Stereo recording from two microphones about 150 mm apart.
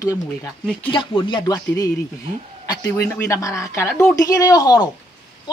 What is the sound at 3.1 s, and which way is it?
Speech, 20° left (ahead or behind).